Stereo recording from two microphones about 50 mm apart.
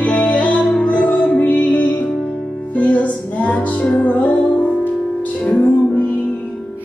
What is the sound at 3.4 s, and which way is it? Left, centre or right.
Music, left.